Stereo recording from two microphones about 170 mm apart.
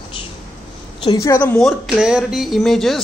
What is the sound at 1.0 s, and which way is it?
Speech, 20° left (ahead or behind).